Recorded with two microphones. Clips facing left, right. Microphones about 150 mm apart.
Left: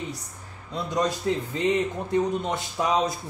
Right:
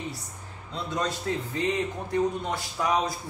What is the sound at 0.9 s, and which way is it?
Speech, 20° left (ahead or behind).